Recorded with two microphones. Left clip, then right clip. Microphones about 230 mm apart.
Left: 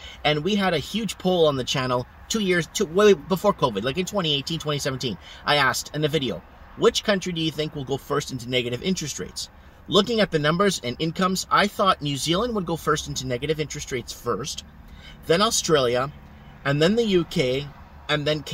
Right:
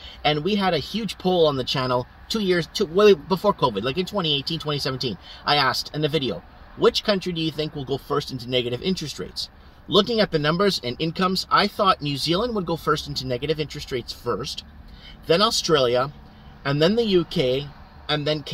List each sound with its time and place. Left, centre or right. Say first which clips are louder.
0.0 s a sound: right 1 dB; centre
0.5 s speech: right 1 dB; centre
4.9 s speech: right 1 dB; left
5.3 s speech: even; centre
18.0 s speech: even; centre